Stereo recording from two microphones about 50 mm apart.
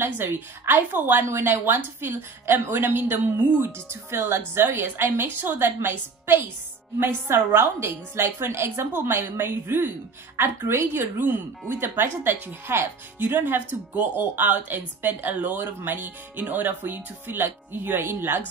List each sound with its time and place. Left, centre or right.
0.0 s a woman's voice: right